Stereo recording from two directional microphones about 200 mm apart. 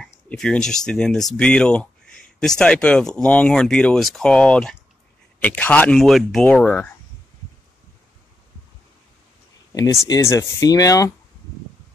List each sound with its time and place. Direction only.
0.3 s speech: 5° left (ahead or behind)
9.7 s speech: 15° left (ahead or behind)